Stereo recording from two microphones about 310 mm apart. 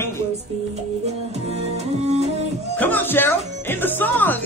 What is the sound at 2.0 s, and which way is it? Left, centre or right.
Music, centre.